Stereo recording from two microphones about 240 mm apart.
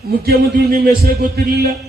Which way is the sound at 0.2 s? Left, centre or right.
Right.